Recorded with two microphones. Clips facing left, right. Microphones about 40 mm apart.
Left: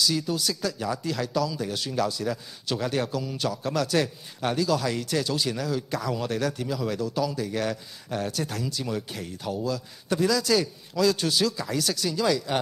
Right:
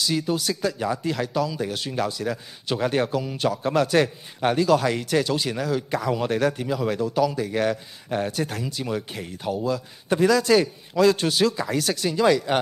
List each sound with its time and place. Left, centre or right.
0.0 s a man's voice: right